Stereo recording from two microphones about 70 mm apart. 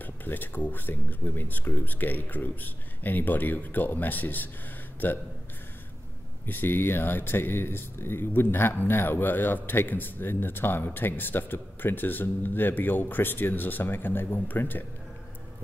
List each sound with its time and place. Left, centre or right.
0.0 s speech: left
6.4 s speech: left